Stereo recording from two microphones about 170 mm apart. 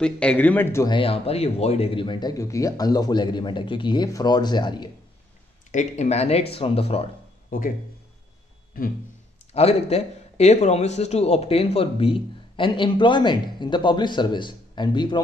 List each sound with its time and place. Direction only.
0.0 s a man's voice: 5° left (ahead or behind)
0.9 s speech: 35° left (ahead or behind)
5.7 s speech: 45° left (ahead or behind)
7.4 s speech: 55° left (ahead or behind)
8.8 s speech: 60° left (ahead or behind)
9.5 s speech: 35° left (ahead or behind)